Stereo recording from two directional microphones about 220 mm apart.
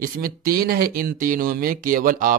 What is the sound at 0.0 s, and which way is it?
Speech, 40° right (ahead or behind).